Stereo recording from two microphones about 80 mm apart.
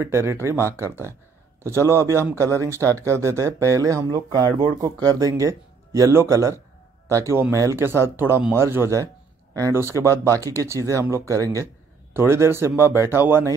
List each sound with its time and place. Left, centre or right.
0.0 s speech: right
4.1 s speech: right
4.8 s speech: right